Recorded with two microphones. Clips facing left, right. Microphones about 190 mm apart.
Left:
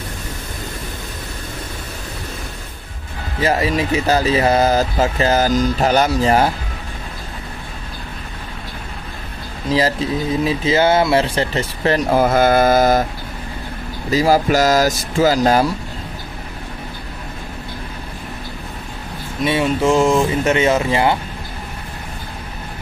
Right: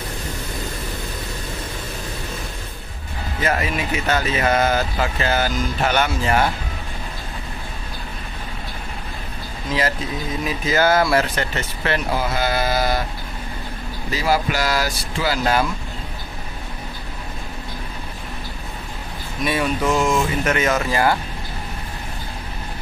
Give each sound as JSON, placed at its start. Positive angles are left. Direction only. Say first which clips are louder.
{"t": 3.4, "sound": "speech", "louder": "left 5 dB", "side_deg": 35}
{"t": 9.7, "sound": "speech", "louder": "left 6 dB", "side_deg": 35}
{"t": 14.1, "sound": "speech", "louder": "left 7 dB", "side_deg": 40}
{"t": 19.4, "sound": "speech", "louder": "left 4 dB", "side_deg": 25}